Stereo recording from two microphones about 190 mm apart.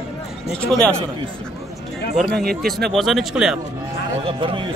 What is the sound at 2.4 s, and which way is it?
Speech, 55° right (ahead or behind).